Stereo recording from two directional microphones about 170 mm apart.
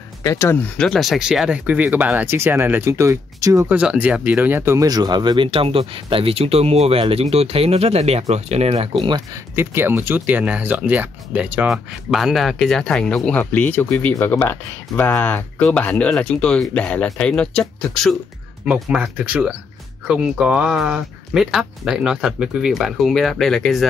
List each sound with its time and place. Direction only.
0.2 s speech: 15° left (ahead or behind); by 3.7 s 20° right (ahead or behind)
3.7 s speech: 5° right (ahead or behind); by 8.9 s 35° right (ahead or behind)
9.0 s speech: 25° right (ahead or behind)
9.6 s speech: 15° right (ahead or behind); by 18.1 s 5° left (ahead or behind)
18.7 s speech: 5° right (ahead or behind)